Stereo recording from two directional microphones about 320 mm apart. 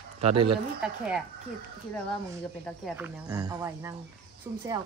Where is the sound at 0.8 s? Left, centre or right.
Centre.